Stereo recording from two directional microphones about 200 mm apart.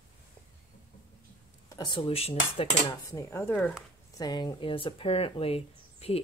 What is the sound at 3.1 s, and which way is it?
Speech, 15° left (ahead or behind).